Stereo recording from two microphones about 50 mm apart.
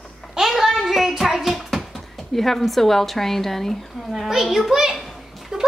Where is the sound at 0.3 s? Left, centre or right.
Centre.